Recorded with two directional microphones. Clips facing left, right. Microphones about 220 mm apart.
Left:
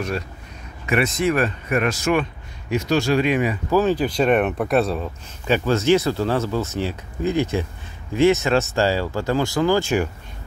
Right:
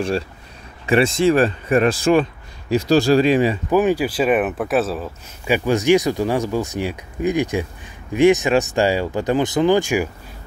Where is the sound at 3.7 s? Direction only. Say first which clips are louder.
Right 1 dB; 10° right (ahead or behind).